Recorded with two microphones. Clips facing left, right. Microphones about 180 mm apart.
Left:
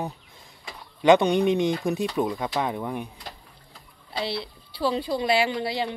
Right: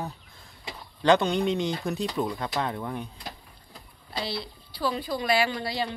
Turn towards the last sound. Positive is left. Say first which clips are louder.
# left 2 dB
turn(degrees=20)  # may be behind; listen again after turning